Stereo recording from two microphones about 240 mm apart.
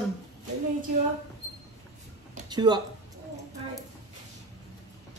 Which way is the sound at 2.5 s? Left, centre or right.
Centre.